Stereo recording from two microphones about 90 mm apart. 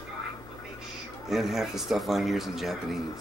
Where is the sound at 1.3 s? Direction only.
5° right (ahead or behind).